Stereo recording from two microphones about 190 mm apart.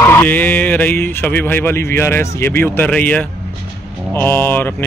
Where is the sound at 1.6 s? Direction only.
10° left (ahead or behind).